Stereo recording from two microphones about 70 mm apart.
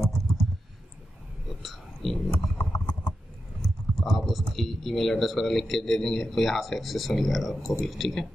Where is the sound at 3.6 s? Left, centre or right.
Centre.